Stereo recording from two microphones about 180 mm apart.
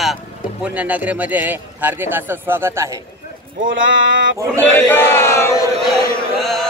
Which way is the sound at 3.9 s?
90° right.